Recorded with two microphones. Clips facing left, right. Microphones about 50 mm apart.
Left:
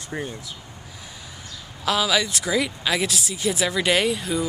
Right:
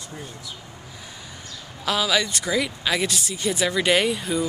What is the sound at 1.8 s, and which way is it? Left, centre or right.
Speech, centre.